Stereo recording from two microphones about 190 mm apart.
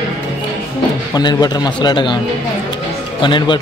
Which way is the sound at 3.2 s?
25° left (ahead or behind).